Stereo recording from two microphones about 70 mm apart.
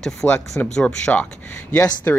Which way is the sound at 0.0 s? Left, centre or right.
Centre.